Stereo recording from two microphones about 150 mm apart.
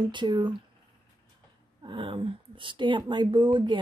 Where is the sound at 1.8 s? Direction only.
35° right (ahead or behind).